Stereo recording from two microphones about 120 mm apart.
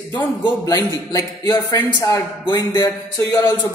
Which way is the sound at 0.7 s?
30° left (ahead or behind).